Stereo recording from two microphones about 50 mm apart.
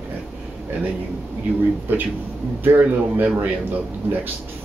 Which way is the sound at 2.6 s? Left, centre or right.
Right.